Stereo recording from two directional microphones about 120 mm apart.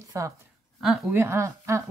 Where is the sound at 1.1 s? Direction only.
20° right (ahead or behind).